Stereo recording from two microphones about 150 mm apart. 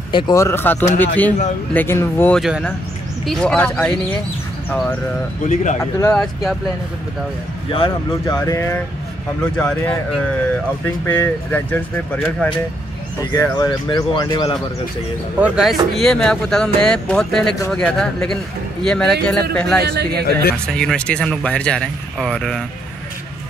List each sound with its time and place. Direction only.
0.1 s speech: 20° left (ahead or behind)
5.5 s speech: 55° left (ahead or behind)
5.8 s speech: 20° left (ahead or behind)
6.1 s speech: centre (ahead or behind)
8.3 s speech: 20° left (ahead or behind)
9.4 s speech: 5° left (ahead or behind)
13.2 s speech: 25° left (ahead or behind)
15.4 s speech: 5° right (ahead or behind)
19.8 s a man's voice: 90° right
20.6 s speech: 5° left (ahead or behind)